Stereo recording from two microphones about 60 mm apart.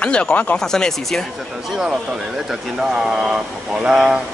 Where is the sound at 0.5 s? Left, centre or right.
Centre.